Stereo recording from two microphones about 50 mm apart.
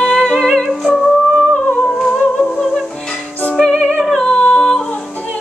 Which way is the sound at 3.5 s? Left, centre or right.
Centre.